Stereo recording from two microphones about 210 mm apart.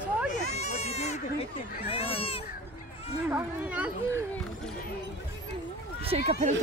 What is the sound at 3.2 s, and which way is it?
Speech, 5° right (ahead or behind).